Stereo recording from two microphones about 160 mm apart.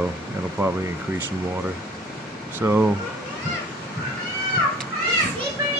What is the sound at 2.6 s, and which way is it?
Speech, 15° right (ahead or behind).